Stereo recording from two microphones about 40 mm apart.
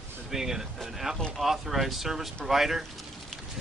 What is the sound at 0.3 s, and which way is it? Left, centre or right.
Speech, centre.